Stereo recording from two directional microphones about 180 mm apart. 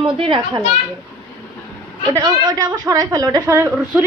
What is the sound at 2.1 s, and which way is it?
A woman's voice, 20° right (ahead or behind).